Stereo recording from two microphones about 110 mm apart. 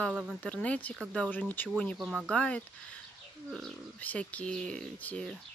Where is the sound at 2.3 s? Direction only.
10° left (ahead or behind).